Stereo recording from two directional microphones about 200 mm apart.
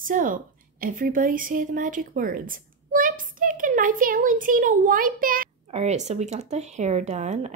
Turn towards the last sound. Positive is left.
turn(degrees=-35)  # may be behind; listen again after turning